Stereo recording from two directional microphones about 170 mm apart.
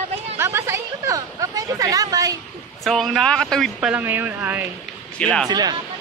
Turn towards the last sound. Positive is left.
turn(degrees=-25)  # may be behind; listen again after turning